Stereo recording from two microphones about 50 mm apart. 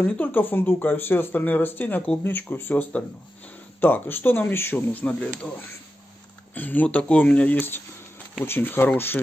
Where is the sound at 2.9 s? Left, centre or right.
Left.